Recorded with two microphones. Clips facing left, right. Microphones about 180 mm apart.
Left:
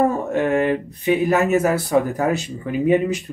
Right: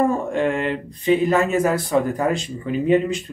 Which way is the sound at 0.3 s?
5° left (ahead or behind).